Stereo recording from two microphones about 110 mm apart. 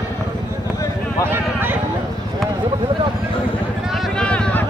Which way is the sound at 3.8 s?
Centre (ahead or behind).